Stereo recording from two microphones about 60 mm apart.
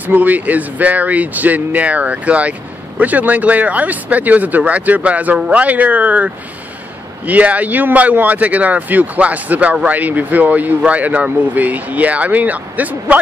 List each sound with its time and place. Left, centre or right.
0.0 s speech: right